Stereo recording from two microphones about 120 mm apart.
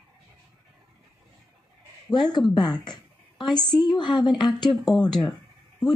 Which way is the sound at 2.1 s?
40° left (ahead or behind).